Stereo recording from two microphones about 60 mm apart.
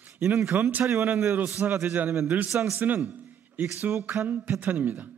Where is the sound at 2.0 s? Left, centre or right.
Right.